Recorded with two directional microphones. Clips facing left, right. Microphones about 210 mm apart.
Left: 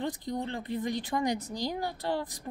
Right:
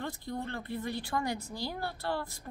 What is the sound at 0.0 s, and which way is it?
Speech, 20° left (ahead or behind).